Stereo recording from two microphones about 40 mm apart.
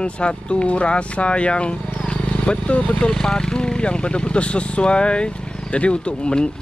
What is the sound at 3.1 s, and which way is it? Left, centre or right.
Speech, centre.